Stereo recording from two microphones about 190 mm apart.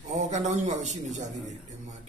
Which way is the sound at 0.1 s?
40° right (ahead or behind).